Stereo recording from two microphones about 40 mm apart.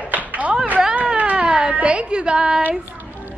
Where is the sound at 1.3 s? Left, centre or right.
Right.